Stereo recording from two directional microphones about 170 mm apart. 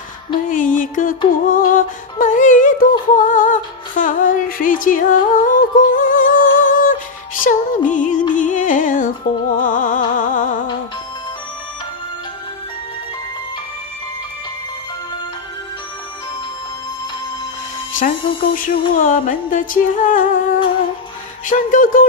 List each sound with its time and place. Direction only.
0.5 s music: 50° left (ahead or behind)
17.9 s speech: 50° left (ahead or behind)
18.9 s music: 50° left (ahead or behind)
21.5 s music: 50° left (ahead or behind)